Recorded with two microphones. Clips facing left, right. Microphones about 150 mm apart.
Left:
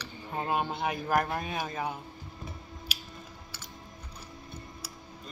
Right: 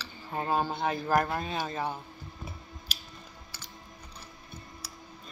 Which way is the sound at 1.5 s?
30° right (ahead or behind).